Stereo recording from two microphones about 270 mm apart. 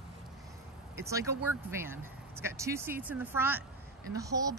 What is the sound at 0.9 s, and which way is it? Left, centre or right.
A woman's voice, centre.